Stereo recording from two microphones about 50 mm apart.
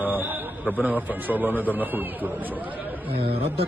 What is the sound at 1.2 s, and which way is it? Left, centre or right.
Speech, right.